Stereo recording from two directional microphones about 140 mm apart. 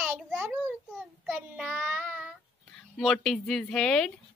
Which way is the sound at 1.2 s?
10° right (ahead or behind).